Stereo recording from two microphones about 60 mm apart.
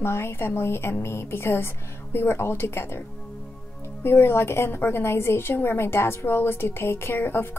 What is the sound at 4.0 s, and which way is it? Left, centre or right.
A woman's voice, left.